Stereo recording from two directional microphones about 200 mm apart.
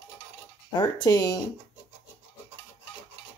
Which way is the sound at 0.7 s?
20° left (ahead or behind).